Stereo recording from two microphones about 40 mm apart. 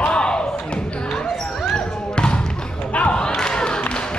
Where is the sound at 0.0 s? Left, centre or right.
Left.